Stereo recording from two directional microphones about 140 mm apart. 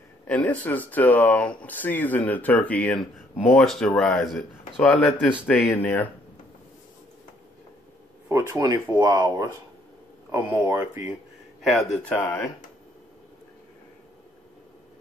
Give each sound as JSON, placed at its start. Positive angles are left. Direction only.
{"t": 0.3, "sound": "speech", "side_deg": 10}
{"t": 8.3, "sound": "speech", "side_deg": -25}
{"t": 11.6, "sound": "speech", "side_deg": 0}